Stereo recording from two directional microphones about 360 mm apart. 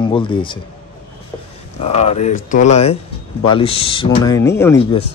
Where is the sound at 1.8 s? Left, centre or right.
Centre.